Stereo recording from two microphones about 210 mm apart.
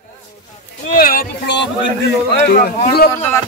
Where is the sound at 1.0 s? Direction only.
45° left (ahead or behind).